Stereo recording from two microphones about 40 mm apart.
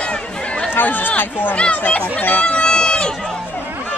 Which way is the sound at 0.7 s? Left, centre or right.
Left.